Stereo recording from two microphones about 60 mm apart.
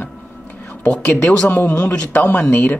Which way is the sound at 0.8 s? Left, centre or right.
Centre.